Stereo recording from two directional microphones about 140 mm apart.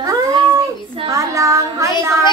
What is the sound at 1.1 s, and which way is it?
Child singing, 25° right (ahead or behind).